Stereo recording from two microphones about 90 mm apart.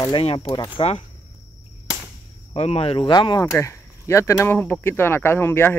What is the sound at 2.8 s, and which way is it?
Speech, 90° left.